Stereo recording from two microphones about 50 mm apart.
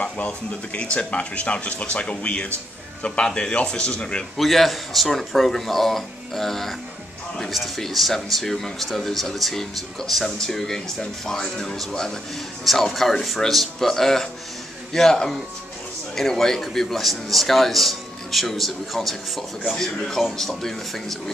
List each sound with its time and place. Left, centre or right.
0.9 s speech: left
4.4 s speech: centre